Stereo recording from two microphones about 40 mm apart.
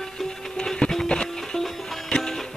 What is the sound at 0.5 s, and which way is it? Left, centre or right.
Music, left.